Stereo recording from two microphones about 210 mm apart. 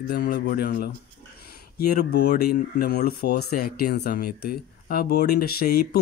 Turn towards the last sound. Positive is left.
turn(degrees=45)  # may be behind; listen again after turning